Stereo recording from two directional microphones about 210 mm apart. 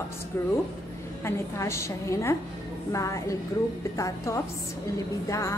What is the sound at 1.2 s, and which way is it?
Music, 15° left (ahead or behind).